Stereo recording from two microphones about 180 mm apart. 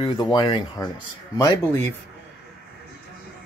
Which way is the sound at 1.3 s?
15° left (ahead or behind).